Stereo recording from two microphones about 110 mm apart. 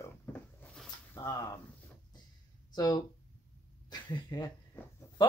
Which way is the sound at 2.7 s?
40° left (ahead or behind).